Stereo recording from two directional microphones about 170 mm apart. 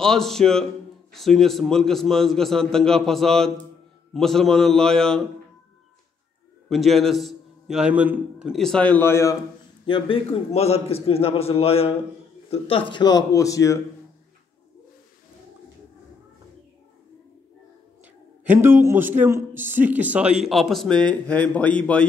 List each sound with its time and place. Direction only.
0.0 s a man's voice: 5° left (ahead or behind)
6.7 s a man's voice: centre (ahead or behind); by 9.4 s 15° left (ahead or behind)
9.8 s a man's voice: 30° left (ahead or behind)
18.0 s a man's voice: 10° right (ahead or behind); by 22.0 s 10° left (ahead or behind)